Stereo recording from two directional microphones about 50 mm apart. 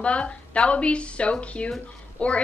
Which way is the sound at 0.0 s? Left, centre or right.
Left.